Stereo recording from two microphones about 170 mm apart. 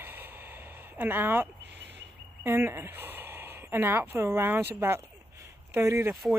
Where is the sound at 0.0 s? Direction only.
10° right (ahead or behind).